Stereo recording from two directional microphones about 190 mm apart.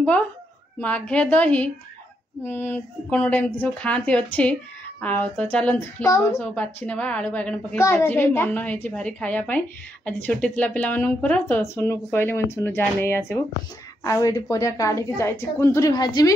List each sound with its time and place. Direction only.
0.7 s a woman's voice: 5° left (ahead or behind)